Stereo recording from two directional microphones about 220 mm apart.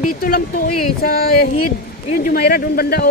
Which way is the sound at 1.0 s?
45° left (ahead or behind).